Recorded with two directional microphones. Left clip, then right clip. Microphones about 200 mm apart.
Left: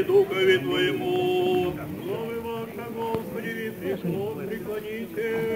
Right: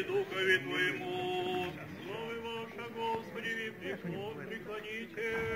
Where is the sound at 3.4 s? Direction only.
Centre (ahead or behind).